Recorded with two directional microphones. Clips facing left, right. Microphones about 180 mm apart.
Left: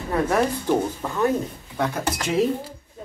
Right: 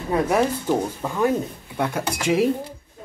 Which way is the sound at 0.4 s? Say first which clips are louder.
Even; 10° right (ahead or behind).